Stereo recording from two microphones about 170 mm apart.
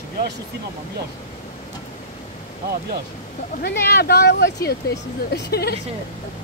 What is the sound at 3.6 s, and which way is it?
Speech, 70° left (ahead or behind).